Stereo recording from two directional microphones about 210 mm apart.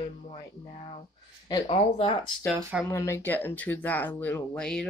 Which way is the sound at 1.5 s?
25° left (ahead or behind).